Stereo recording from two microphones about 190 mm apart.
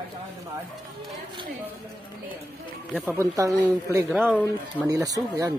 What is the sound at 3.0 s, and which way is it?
Speech, 15° right (ahead or behind).